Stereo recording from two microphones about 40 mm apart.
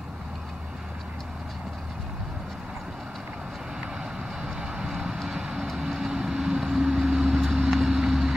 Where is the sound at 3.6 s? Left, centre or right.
Centre.